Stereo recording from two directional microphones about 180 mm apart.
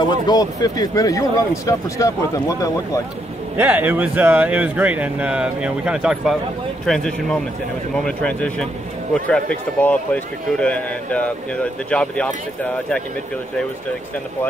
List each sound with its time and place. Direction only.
0.0 s speech: 25° left (ahead or behind)
3.5 s a man's voice: 10° right (ahead or behind); by 12.3 s 5° left (ahead or behind)